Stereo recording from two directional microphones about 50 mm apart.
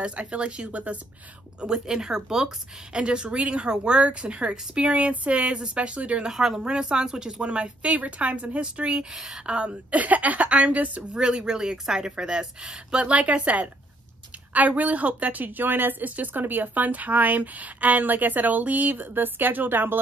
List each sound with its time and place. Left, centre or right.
0.0 s speech: right
1.6 s speech: centre
6.2 s speech: centre
6.6 s speech: centre
11.1 s speech: centre
14.7 s speech: right